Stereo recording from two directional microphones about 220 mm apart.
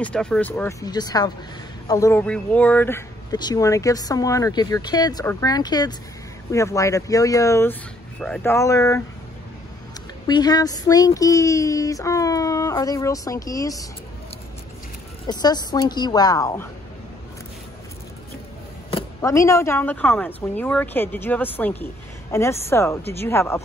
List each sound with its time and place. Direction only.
0.0 s speech: 5° left (ahead or behind)
10.2 s speech: 20° left (ahead or behind)
15.2 s speech: 20° left (ahead or behind)
19.2 s speech: 15° left (ahead or behind)